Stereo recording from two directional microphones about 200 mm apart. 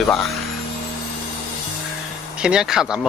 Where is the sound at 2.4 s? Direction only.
5° right (ahead or behind).